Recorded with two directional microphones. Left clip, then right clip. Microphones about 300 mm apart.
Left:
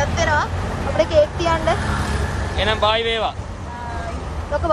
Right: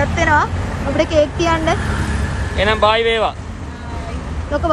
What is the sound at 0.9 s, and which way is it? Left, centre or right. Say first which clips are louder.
Speech: right 1 dB; right.